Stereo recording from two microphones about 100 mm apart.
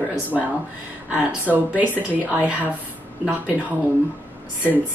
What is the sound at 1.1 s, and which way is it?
Speech, 15° right (ahead or behind).